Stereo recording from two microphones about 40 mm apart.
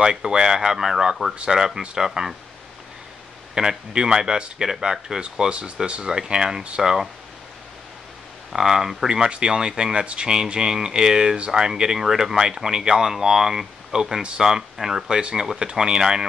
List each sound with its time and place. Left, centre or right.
0.0 s speech: centre
3.5 s speech: centre
5.2 s speech: right
8.5 s speech: centre
9.2 s speech: right
15.1 s speech: right